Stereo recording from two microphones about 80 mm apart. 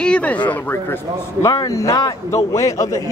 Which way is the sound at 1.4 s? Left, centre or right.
Left.